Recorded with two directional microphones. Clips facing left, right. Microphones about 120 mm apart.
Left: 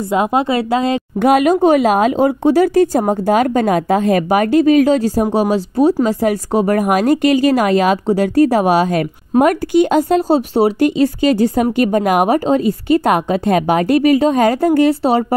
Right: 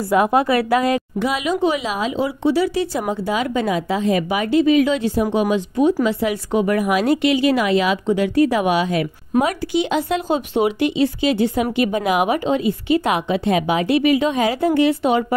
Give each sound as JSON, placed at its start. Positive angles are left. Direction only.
{"t": 0.1, "sound": "a woman's voice", "side_deg": 20}
{"t": 1.2, "sound": "a woman's voice", "side_deg": 50}